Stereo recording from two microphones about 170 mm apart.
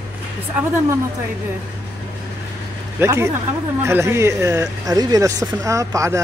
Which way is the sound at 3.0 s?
15° right (ahead or behind).